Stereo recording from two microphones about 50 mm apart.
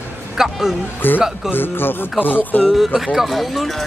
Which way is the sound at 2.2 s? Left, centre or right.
Left.